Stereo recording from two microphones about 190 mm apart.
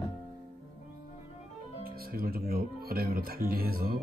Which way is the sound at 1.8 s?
50° right (ahead or behind).